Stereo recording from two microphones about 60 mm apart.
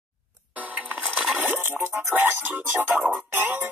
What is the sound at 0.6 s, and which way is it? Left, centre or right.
Music, right.